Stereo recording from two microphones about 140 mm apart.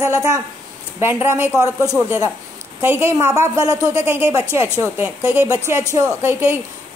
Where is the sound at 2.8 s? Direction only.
15° right (ahead or behind).